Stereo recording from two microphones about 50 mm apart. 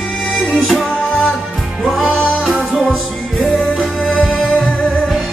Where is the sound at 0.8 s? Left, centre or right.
Left.